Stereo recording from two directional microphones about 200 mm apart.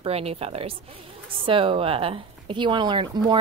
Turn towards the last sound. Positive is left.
turn(degrees=-25)  # may be behind; listen again after turning